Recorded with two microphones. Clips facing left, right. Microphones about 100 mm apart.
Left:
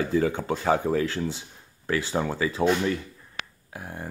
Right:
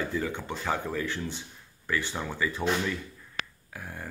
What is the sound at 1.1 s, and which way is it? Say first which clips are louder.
Speech: left 6 dB; 90° left.